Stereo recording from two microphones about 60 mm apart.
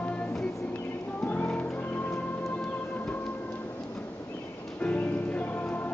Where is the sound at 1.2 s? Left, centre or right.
Left.